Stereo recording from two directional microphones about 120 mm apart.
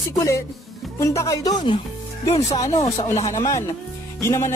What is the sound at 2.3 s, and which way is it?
Speech, 65° left (ahead or behind).